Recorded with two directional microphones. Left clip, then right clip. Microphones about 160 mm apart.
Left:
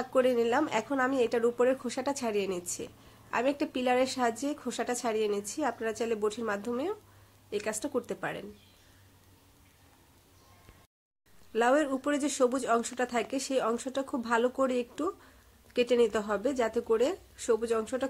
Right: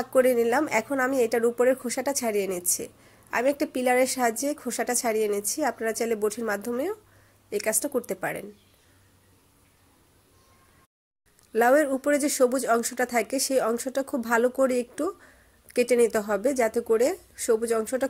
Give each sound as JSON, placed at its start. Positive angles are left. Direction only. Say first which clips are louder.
{"t": 0.0, "sound": "a woman's voice", "louder": "right 5 dB", "side_deg": -30}
{"t": 11.5, "sound": "a woman's voice", "louder": "right 6 dB", "side_deg": -30}